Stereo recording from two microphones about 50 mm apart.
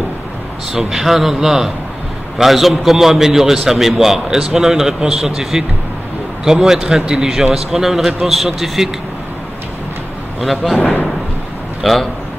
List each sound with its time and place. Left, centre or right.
0.7 s a man's voice: centre
10.4 s a man's voice: centre
11.8 s a man's voice: centre